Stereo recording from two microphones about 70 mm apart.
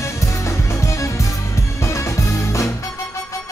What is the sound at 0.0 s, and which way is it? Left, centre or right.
Music, left.